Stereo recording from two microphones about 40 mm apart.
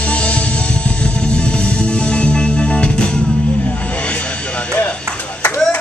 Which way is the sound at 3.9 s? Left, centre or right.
Left.